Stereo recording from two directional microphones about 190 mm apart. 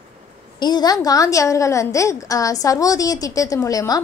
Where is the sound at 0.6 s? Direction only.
20° left (ahead or behind).